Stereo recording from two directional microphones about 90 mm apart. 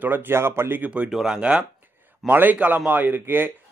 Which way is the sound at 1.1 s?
5° right (ahead or behind).